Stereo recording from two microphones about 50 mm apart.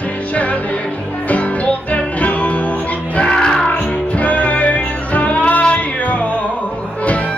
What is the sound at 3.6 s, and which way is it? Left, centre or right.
Music, left.